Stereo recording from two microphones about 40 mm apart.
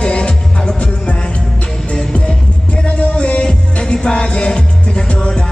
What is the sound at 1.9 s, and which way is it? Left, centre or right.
Music, left.